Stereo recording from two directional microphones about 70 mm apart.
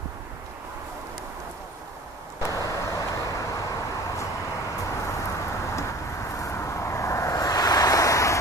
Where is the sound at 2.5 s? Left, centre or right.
Left.